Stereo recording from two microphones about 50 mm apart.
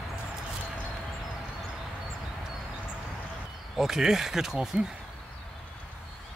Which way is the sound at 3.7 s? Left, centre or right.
Centre.